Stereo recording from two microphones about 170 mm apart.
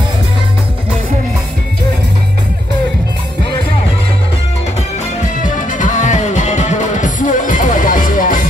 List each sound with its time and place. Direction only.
5.2 s music: 50° left (ahead or behind)